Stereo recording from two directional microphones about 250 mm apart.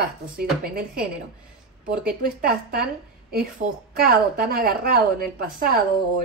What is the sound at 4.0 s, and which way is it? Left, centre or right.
A woman's voice, right.